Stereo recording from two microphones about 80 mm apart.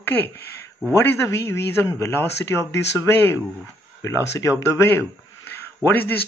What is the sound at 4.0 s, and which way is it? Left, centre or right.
Speech, left.